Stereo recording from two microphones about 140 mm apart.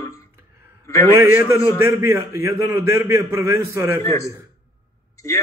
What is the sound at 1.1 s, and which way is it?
A man's voice, 20° right (ahead or behind).